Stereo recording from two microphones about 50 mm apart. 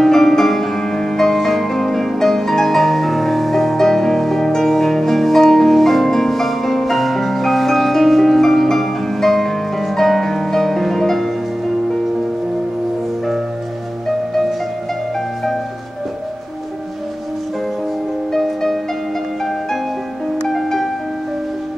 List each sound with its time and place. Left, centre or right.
0.0 s music: centre
18.3 s music: centre
20.4 s music: centre